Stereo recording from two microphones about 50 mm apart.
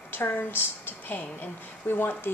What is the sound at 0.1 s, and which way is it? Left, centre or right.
A woman's voice, left.